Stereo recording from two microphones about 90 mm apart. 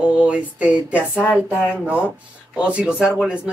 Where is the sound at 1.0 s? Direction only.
20° left (ahead or behind).